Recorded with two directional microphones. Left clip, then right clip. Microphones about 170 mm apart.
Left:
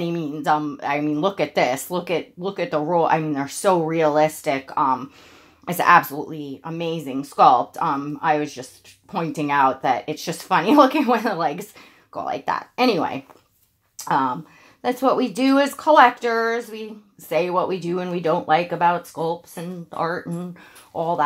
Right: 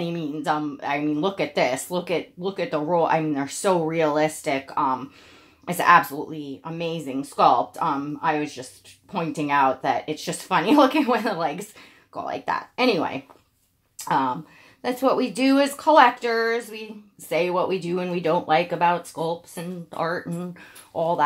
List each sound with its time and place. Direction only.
0.0 s speech: 35° left (ahead or behind); by 21.2 s 15° left (ahead or behind)